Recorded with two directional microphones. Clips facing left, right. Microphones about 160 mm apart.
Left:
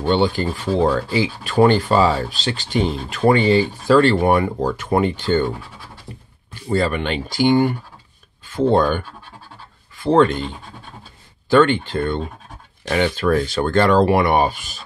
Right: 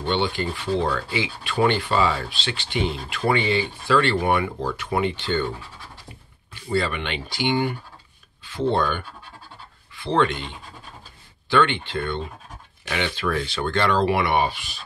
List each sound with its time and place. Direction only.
0.0 s speech: 40° left (ahead or behind)
6.7 s speech: 45° left (ahead or behind)